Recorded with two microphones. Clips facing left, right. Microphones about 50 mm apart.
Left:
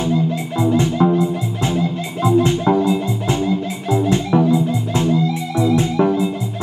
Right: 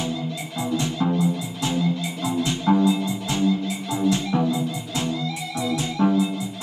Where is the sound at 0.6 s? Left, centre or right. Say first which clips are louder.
Left 9 dB; left.